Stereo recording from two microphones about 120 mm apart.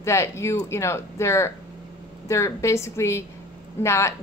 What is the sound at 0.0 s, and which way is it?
Speech, 25° left (ahead or behind).